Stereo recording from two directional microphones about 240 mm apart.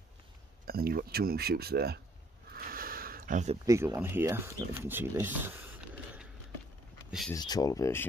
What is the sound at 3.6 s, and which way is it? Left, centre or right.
Speech, centre.